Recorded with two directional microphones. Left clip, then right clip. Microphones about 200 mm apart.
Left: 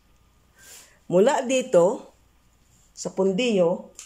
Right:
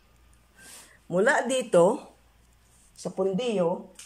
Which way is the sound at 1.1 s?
10° left (ahead or behind).